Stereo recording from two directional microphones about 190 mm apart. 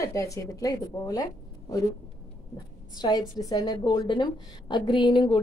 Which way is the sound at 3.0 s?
20° left (ahead or behind).